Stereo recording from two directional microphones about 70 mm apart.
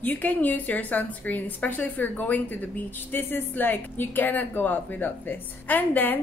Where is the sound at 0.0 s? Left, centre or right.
Left.